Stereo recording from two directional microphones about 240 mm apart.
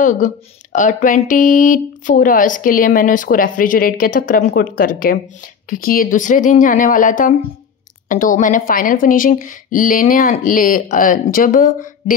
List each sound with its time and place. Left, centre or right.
0.0 s speech: left